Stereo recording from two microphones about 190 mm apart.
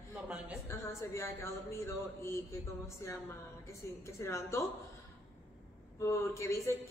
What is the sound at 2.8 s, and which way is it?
Speech, 15° left (ahead or behind).